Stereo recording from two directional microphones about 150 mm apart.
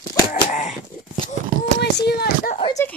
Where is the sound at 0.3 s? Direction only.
60° left (ahead or behind).